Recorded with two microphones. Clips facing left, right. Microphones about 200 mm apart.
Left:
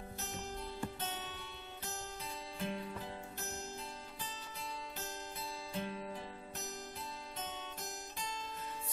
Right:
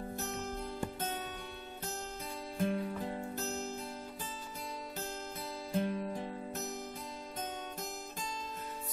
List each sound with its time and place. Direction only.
2.6 s music: 45° right (ahead or behind)
5.7 s music: 45° right (ahead or behind)